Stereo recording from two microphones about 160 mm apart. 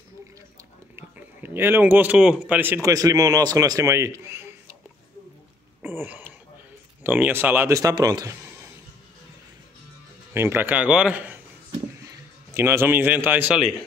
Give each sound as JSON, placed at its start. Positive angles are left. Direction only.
{"t": 0.9, "sound": "a man's voice", "side_deg": -15}
{"t": 5.8, "sound": "throat clearing", "side_deg": -15}
{"t": 7.0, "sound": "speech", "side_deg": -10}
{"t": 10.3, "sound": "speech", "side_deg": -15}
{"t": 12.4, "sound": "speech", "side_deg": -15}